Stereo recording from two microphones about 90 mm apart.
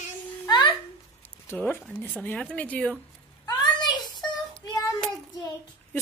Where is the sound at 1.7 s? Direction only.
20° left (ahead or behind).